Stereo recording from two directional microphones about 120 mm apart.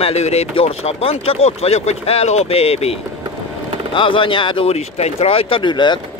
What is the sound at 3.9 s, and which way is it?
Speech, 45° left (ahead or behind).